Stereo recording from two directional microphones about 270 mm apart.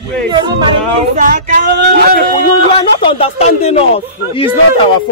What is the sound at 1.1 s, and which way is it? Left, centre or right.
Speech, right.